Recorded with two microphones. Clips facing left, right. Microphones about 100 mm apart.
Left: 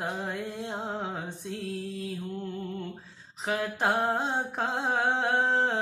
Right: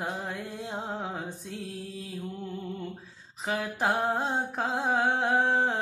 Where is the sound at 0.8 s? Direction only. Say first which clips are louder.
Left 1 dB; centre (ahead or behind).